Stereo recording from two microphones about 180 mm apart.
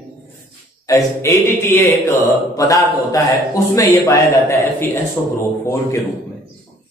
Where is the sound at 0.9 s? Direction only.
15° left (ahead or behind).